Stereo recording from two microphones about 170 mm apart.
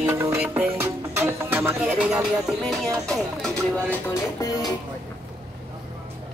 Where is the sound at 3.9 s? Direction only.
20° left (ahead or behind).